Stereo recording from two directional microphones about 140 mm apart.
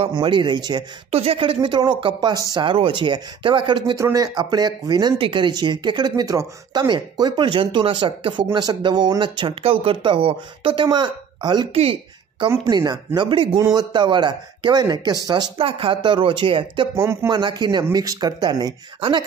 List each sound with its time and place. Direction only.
0.0 s speech: 35° right (ahead or behind)
1.1 s speech: 45° right (ahead or behind); by 2.6 s 25° right (ahead or behind)
2.6 s speech: 35° right (ahead or behind)
3.9 s speech: 25° right (ahead or behind)
11.7 s speech: 45° right (ahead or behind)
12.6 s speech: 30° right (ahead or behind)
15.6 s speech: 40° right (ahead or behind)
16.9 s speech: 20° right (ahead or behind)
17.3 s speech: 35° right (ahead or behind)